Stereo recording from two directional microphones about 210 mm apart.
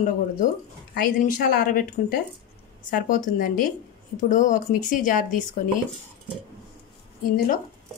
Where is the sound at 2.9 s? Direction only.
40° left (ahead or behind).